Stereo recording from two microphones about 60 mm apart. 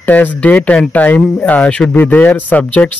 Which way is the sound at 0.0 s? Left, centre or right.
Left.